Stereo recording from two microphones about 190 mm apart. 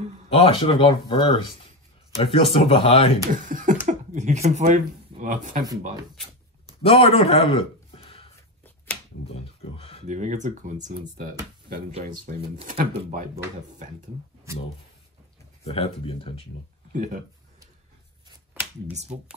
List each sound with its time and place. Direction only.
0.3 s speech: 30° left (ahead or behind)
3.4 s speech: 40° right (ahead or behind)
6.8 s a man's voice: 30° left (ahead or behind)
9.6 s a sound: 30° left (ahead or behind)
10.0 s speech: 40° right (ahead or behind)
14.5 s speech: 15° right (ahead or behind)
15.6 s speech: 30° left (ahead or behind)
16.9 s speech: 40° right (ahead or behind)
18.9 s speech: 35° right (ahead or behind)